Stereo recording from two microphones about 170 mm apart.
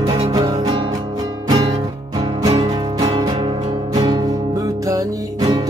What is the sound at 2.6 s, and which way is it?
Music, 20° right (ahead or behind).